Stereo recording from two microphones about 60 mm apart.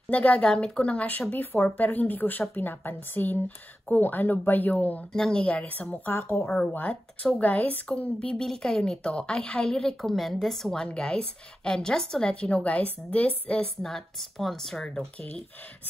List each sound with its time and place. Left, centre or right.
0.1 s speech: left
5.1 s a woman's voice: centre
6.1 s speech: left
6.7 s speech: left
8.2 s a woman's voice: centre
13.8 s a woman's voice: centre